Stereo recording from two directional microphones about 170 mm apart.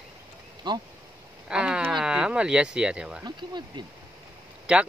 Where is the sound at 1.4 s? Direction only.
5° right (ahead or behind).